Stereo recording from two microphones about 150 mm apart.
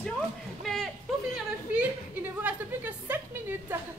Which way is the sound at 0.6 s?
Centre (ahead or behind).